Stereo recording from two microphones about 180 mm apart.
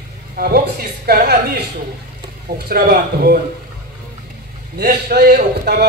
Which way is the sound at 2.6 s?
60° right (ahead or behind).